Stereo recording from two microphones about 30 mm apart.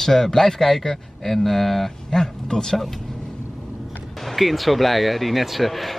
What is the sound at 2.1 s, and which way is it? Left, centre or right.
Speech, centre.